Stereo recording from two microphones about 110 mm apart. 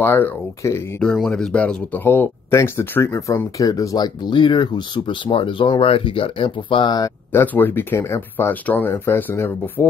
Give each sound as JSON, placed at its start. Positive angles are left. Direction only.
{"t": 0.0, "sound": "speech", "side_deg": 20}
{"t": 1.0, "sound": "speech", "side_deg": 0}
{"t": 1.6, "sound": "speech", "side_deg": 15}
{"t": 7.3, "sound": "speech", "side_deg": 15}